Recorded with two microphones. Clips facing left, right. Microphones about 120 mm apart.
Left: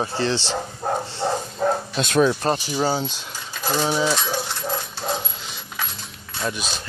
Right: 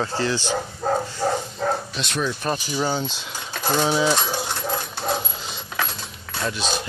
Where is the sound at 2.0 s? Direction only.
50° left (ahead or behind).